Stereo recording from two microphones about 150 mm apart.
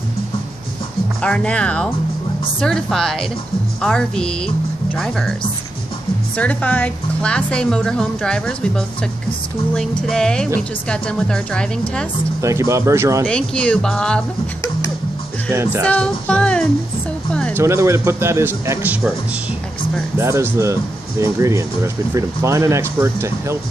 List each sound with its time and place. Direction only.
1.2 s a woman's voice: 10° left (ahead or behind)
6.3 s a woman's voice: 10° left (ahead or behind)
12.4 s speech: 20° right (ahead or behind)
13.2 s a woman's voice: 5° left (ahead or behind)
15.5 s speech: 15° right (ahead or behind)
15.9 s a woman's voice: 10° left (ahead or behind)
17.3 s music: 5° left (ahead or behind)
17.6 s speech: 15° right (ahead or behind)
20.2 s speech: 20° right (ahead or behind)